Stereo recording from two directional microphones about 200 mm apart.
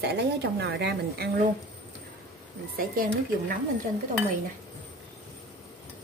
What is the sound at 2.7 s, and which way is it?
Speech, 45° right (ahead or behind).